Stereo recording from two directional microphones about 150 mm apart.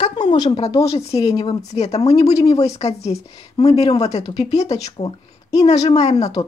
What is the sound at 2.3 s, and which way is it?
Speech, 25° left (ahead or behind).